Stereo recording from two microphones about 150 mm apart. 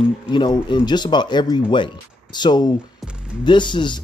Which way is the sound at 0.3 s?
30° left (ahead or behind).